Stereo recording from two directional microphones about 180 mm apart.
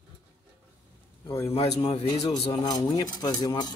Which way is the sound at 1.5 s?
35° left (ahead or behind).